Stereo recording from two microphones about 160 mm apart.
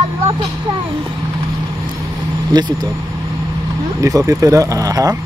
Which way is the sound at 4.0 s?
20° right (ahead or behind).